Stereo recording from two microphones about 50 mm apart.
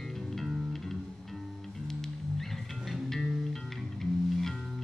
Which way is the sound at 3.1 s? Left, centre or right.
Centre.